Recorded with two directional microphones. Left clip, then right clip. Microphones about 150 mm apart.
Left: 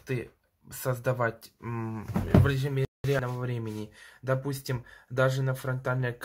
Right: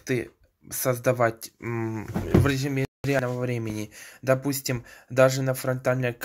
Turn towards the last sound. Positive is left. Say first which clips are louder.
# right 7 dB
turn(degrees=-25)  # may be behind; listen again after turning